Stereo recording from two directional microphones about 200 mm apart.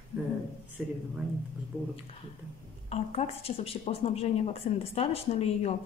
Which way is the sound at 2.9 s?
30° left (ahead or behind).